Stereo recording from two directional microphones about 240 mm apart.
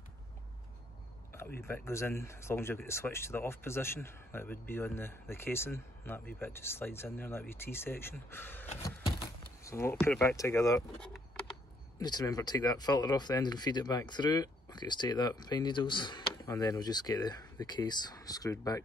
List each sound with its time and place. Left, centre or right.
1.6 s speech: centre